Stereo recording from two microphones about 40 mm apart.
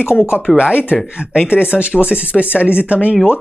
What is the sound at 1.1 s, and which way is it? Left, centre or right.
Speech, right.